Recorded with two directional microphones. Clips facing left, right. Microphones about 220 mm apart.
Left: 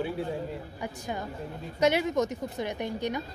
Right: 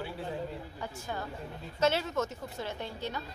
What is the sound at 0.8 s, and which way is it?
A woman's voice, 15° left (ahead or behind).